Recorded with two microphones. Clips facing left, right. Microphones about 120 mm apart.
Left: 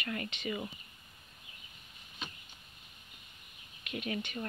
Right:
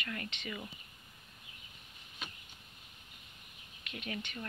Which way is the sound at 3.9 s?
10° left (ahead or behind).